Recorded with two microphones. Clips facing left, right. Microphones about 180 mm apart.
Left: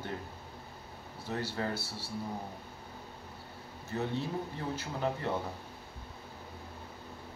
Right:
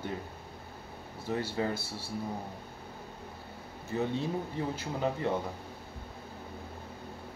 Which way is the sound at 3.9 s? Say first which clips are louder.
Right 3 dB; 15° right (ahead or behind).